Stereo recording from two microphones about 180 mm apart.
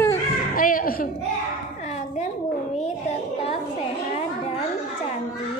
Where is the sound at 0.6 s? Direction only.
50° left (ahead or behind).